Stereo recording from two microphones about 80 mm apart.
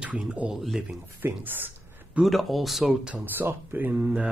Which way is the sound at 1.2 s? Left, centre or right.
Right.